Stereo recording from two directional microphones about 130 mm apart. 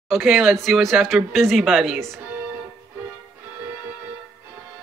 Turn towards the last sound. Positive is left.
turn(degrees=-20)  # may be behind; listen again after turning